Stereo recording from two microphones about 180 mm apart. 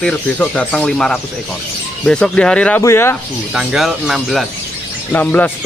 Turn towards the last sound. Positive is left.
turn(degrees=10)  # may be behind; listen again after turning